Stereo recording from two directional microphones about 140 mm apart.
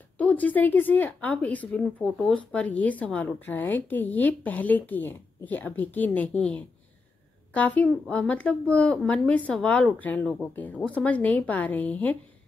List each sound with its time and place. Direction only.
0.2 s speech: 10° left (ahead or behind)